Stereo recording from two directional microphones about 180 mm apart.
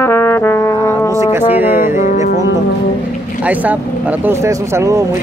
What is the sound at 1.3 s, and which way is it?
Speech, 10° right (ahead or behind).